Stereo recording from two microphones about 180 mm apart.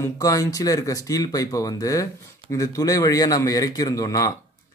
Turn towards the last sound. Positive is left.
turn(degrees=20)  # may be behind; listen again after turning